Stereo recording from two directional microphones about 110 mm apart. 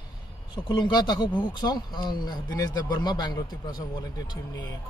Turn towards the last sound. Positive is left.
turn(degrees=35)  # may be behind; listen again after turning